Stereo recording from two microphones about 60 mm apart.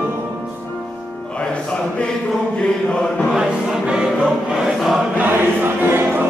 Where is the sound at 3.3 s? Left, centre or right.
Centre.